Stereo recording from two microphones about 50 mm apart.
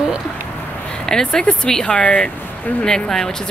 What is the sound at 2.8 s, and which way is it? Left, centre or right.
Speech, centre.